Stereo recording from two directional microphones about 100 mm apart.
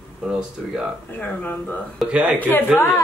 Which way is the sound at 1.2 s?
15° left (ahead or behind).